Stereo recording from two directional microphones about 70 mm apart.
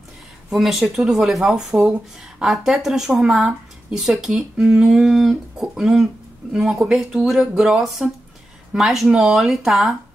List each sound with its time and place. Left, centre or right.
0.5 s a woman's voice: centre